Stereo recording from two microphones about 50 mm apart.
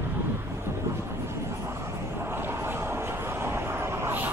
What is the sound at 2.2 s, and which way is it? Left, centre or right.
Vehicle, right.